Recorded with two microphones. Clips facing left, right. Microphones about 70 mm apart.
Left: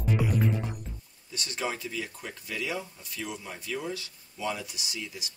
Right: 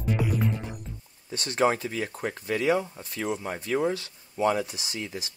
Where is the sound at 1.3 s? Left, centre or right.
Right.